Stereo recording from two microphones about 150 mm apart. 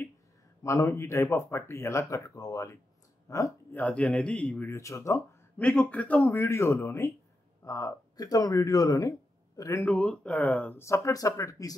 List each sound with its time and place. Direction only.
0.7 s a man's voice: 20° left (ahead or behind)
5.6 s a man's voice: 5° left (ahead or behind)
9.8 s a man's voice: 10° left (ahead or behind)